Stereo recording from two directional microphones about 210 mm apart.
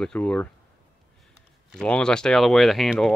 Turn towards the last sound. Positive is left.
turn(degrees=0)  # may be behind; listen again after turning